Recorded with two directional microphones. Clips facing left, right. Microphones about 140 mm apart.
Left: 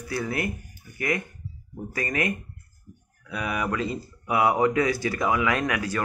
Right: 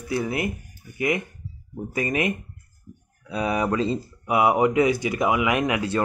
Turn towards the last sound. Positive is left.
turn(degrees=-25)  # may be behind; listen again after turning